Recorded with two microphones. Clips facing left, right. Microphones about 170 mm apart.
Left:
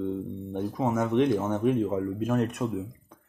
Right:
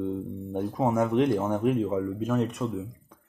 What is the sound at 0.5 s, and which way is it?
Speech, 5° right (ahead or behind).